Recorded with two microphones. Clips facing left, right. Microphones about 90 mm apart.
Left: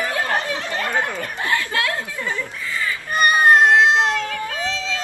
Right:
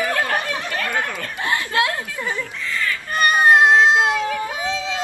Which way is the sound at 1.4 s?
20° right (ahead or behind).